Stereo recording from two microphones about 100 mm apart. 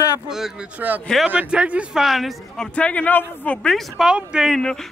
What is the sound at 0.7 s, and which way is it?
A man's voice, 15° right (ahead or behind).